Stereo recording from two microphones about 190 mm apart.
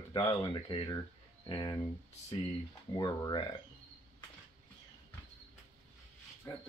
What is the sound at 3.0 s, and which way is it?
Speech, 25° left (ahead or behind).